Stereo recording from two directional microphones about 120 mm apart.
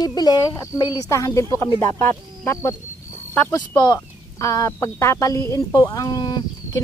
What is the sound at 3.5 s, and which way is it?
Speech, 30° left (ahead or behind).